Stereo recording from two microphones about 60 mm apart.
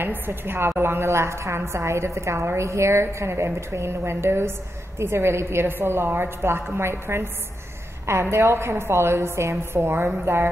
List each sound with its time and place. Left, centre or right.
0.0 s a woman's voice: right